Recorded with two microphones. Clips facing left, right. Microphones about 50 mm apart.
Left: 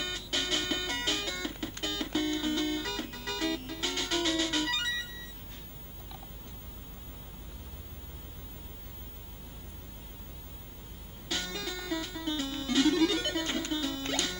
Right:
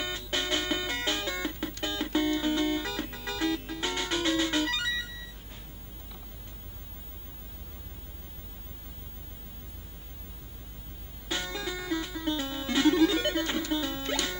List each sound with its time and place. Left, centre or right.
0.0 s music: right
11.2 s music: right